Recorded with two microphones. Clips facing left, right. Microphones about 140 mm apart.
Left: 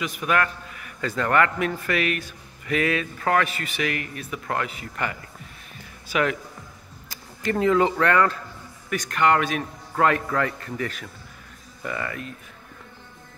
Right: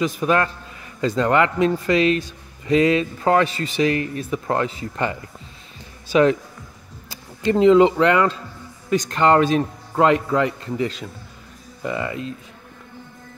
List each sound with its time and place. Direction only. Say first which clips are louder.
0.0 s a man's voice: right 5 dB; 30° right (ahead or behind)
7.1 s a man's voice: right 6 dB; 20° right (ahead or behind)